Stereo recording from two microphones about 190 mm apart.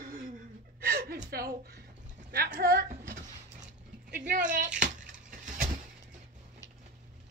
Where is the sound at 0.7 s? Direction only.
55° right (ahead or behind).